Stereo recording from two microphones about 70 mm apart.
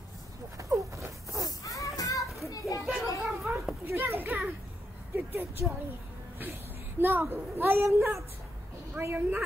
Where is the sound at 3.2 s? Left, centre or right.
Centre.